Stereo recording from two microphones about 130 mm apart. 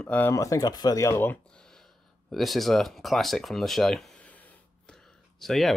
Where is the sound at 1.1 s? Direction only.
15° left (ahead or behind).